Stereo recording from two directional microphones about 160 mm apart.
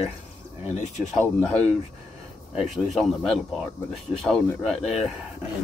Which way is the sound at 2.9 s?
Centre (ahead or behind).